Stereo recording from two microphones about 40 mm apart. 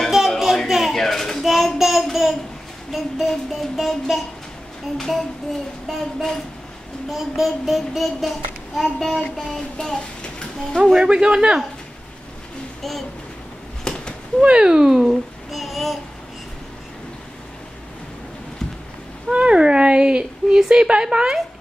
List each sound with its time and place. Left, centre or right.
0.2 s a sound: centre
0.9 s a sound: centre
1.4 s child singing: centre
9.6 s speech: centre
10.8 s speech: centre
13.8 s a sound: left
14.4 s speech: right
14.7 s speech: centre
15.0 s child singing: centre
19.3 s speech: right